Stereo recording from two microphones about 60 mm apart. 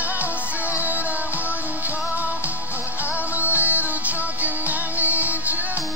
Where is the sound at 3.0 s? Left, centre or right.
Right.